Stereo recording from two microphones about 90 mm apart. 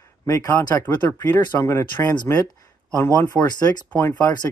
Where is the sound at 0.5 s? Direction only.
25° left (ahead or behind).